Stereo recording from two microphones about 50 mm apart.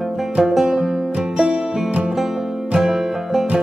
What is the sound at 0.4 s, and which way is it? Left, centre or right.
Music, centre.